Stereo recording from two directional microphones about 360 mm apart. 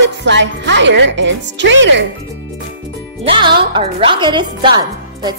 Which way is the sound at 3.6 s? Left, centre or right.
Centre.